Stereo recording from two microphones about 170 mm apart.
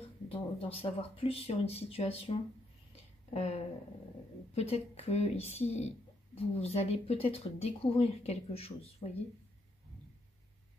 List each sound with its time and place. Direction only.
0.0 s speech: 35° left (ahead or behind)
3.3 s speech: 40° left (ahead or behind)